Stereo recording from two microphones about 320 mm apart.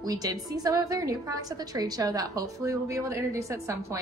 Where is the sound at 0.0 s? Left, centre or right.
Centre.